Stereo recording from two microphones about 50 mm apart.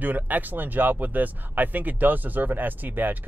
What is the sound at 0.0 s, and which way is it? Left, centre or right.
Speech, right.